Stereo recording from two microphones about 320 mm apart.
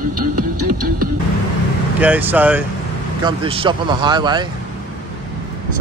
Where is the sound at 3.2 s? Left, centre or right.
Centre.